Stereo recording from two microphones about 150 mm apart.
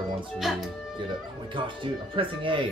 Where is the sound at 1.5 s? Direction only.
35° right (ahead or behind).